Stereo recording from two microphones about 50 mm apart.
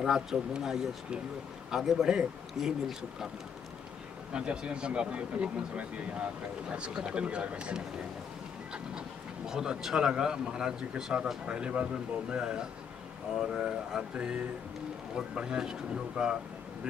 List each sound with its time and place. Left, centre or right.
0.0 s speech: centre
4.3 s speech: right
9.5 s speech: centre